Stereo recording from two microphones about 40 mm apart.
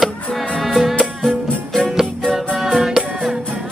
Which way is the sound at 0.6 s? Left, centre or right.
Centre.